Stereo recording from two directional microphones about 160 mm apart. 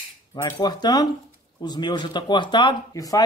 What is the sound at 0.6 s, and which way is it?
Speech, 25° left (ahead or behind).